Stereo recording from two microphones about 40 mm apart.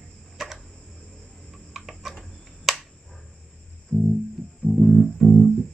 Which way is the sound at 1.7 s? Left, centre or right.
Centre.